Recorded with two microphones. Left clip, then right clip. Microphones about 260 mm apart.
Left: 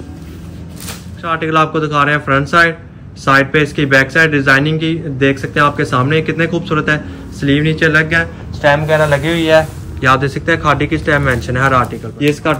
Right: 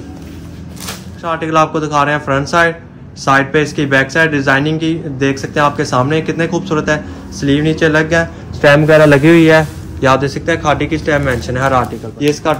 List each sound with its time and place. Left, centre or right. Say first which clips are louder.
1.2 s a man's voice: even; centre
8.8 s a man's voice: right 5 dB; right
9.9 s a man's voice: even; centre